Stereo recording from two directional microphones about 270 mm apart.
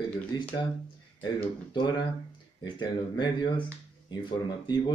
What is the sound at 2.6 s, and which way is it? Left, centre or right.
Speech, centre.